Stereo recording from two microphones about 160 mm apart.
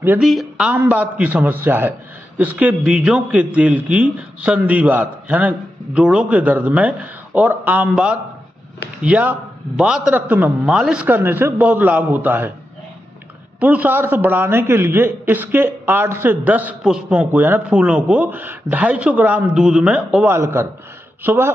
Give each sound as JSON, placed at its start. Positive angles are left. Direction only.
{"t": 0.0, "sound": "a man's voice", "side_deg": -5}
{"t": 13.6, "sound": "a man's voice", "side_deg": -10}